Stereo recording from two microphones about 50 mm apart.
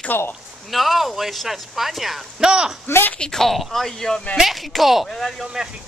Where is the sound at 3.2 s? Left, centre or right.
Centre.